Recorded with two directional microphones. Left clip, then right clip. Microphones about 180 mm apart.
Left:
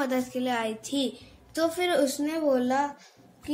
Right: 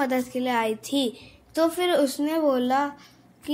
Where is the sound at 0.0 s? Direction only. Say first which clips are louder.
Right 3 dB; 15° right (ahead or behind).